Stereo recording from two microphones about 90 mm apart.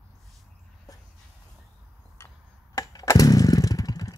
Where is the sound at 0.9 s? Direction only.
40° left (ahead or behind).